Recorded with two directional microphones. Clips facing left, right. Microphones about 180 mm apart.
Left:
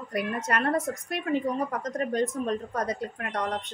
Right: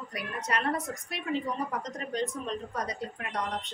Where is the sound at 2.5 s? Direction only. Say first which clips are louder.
Left 5 dB; 50° left (ahead or behind).